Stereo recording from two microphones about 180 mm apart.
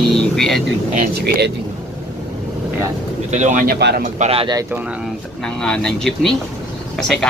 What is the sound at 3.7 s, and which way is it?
Speech, 70° right (ahead or behind).